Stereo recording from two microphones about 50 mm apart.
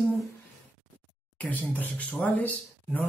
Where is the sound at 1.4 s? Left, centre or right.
Left.